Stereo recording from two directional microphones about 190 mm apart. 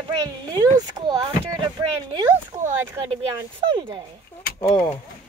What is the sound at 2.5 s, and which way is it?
Speech, 25° right (ahead or behind).